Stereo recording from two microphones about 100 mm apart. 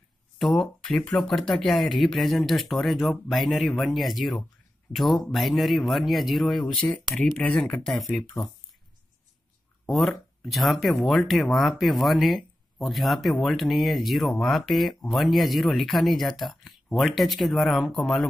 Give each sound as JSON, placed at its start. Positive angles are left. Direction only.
{"t": 0.4, "sound": "speech", "side_deg": 0}
{"t": 9.8, "sound": "speech", "side_deg": 0}